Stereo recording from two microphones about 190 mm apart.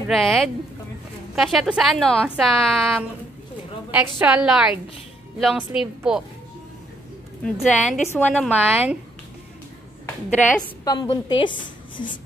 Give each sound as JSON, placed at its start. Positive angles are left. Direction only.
{"t": 0.1, "sound": "a woman's voice", "side_deg": 0}
{"t": 7.4, "sound": "a woman's voice", "side_deg": 5}
{"t": 10.0, "sound": "a sound", "side_deg": 10}
{"t": 10.8, "sound": "a woman's voice", "side_deg": 20}